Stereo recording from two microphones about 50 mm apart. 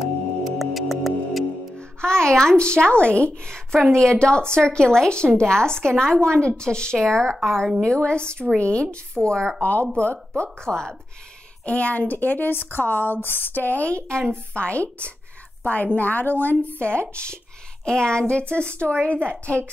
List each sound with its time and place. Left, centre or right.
0.0 s music: centre
1.8 s a woman's voice: centre
7.9 s a woman's voice: centre
9.6 s speech: left
10.6 s a woman's voice: centre
11.6 s a woman's voice: left
17.1 s a woman's voice: left